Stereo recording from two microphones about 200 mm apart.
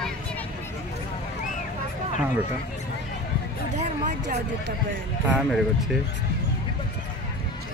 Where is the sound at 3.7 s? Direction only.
40° right (ahead or behind).